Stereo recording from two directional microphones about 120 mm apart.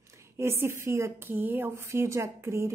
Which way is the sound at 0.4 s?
20° right (ahead or behind).